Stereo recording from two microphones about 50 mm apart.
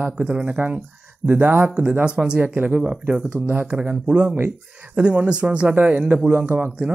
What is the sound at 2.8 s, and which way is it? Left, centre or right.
Speech, right.